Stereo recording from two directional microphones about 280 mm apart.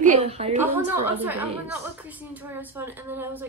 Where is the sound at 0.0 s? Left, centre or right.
Right.